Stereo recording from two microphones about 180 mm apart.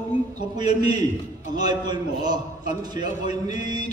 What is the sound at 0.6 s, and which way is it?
A man's voice, 25° right (ahead or behind).